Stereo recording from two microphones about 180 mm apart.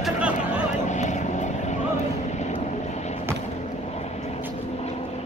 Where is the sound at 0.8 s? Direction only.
40° left (ahead or behind).